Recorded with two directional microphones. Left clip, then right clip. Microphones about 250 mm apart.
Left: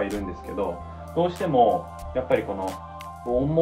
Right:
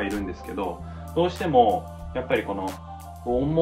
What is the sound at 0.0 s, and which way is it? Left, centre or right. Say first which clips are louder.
Speech: left 1 dB; centre.